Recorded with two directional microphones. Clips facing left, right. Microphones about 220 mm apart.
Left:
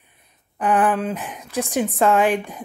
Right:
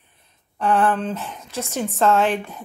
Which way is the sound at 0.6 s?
15° left (ahead or behind).